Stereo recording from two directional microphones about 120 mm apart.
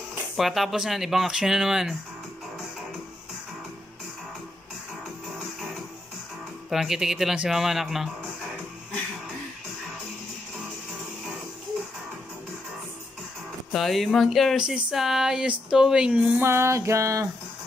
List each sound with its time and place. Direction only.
0.4 s speech: centre (ahead or behind)
6.7 s speech: 5° right (ahead or behind)
13.7 s speech: centre (ahead or behind)
16.3 s music: 20° right (ahead or behind)